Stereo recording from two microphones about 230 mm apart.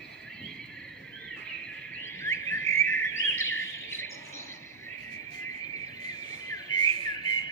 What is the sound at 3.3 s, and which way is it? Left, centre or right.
Bird, left.